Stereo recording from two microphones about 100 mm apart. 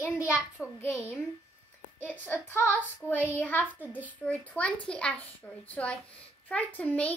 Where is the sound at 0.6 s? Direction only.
10° right (ahead or behind).